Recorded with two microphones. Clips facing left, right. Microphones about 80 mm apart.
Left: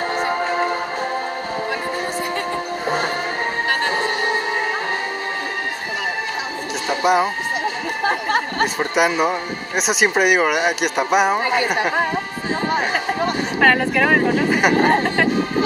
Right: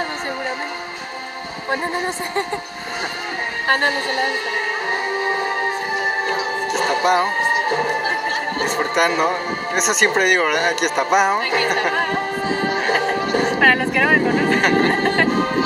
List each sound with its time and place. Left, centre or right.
6.9 s speech: centre
8.7 s a woman's voice: centre
13.6 s speech: centre